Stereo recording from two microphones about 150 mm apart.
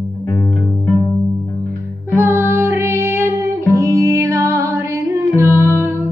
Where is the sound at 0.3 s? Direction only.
15° left (ahead or behind).